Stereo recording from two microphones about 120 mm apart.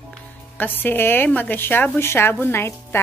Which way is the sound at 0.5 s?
15° left (ahead or behind).